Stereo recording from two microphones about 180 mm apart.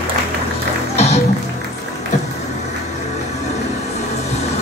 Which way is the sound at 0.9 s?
35° left (ahead or behind).